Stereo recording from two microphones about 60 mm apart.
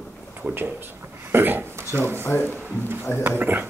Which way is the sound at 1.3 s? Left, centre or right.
Right.